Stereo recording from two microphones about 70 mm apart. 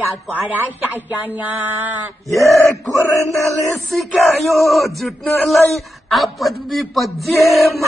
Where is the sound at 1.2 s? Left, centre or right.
Right.